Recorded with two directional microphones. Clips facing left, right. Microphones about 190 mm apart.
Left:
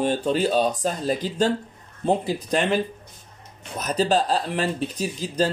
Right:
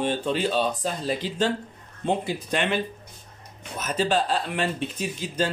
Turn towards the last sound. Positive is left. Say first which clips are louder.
# left 3 dB
turn(degrees=35)  # may be behind; listen again after turning